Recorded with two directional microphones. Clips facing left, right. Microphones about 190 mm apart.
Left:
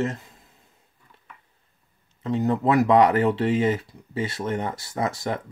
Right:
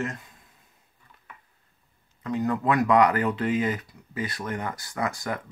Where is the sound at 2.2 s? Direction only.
25° left (ahead or behind).